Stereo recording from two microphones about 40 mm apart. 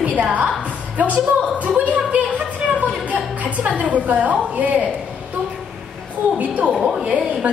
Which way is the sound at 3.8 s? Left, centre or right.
Right.